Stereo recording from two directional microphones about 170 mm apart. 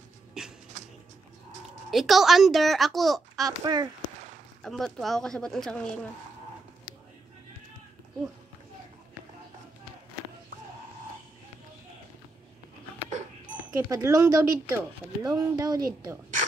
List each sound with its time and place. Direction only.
0.4 s a sound: 5° right (ahead or behind)
1.9 s a child's voice: centre (ahead or behind)
3.4 s speech: 25° right (ahead or behind)
4.6 s a child's voice: centre (ahead or behind)
13.7 s speech: 15° right (ahead or behind)